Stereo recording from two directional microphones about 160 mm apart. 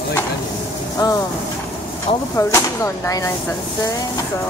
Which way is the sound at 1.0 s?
25° left (ahead or behind).